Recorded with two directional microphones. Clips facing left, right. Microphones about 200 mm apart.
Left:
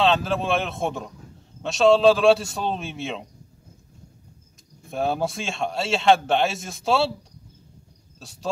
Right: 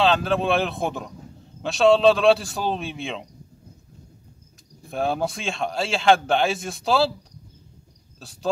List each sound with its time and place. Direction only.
0.0 s a man's voice: centre (ahead or behind)
4.9 s a man's voice: centre (ahead or behind)
8.2 s a man's voice: centre (ahead or behind)